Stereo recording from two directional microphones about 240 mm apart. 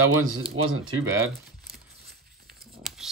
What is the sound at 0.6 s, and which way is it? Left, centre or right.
Speech, right.